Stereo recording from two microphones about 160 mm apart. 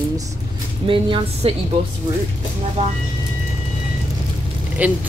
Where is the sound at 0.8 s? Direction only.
35° right (ahead or behind).